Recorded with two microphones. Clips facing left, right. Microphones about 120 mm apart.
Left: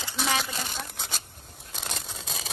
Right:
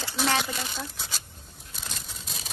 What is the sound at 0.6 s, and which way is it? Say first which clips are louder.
Speech: even; 55° left (ahead or behind).